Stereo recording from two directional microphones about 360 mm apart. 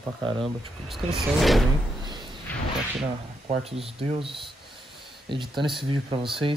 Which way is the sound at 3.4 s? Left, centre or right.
Centre.